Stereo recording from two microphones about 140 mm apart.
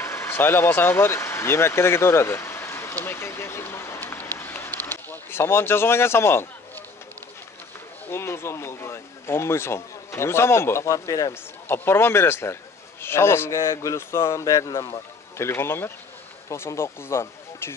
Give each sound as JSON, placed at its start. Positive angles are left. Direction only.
{"t": 0.0, "sound": "speech", "side_deg": 20}
{"t": 8.1, "sound": "speech", "side_deg": 20}